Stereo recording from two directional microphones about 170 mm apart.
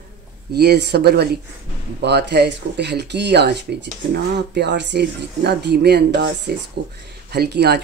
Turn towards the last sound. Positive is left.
turn(degrees=-70)  # may be behind; listen again after turning